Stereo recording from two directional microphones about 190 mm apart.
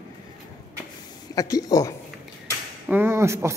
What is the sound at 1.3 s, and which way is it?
Speech, 20° left (ahead or behind).